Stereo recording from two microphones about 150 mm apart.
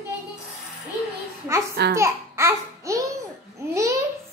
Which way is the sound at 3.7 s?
20° right (ahead or behind).